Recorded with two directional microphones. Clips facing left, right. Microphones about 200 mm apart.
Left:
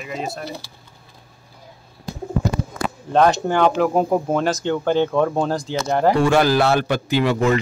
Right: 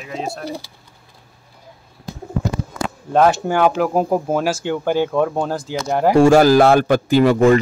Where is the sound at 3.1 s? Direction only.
5° right (ahead or behind).